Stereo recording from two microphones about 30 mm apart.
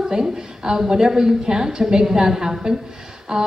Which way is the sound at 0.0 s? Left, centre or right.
Centre.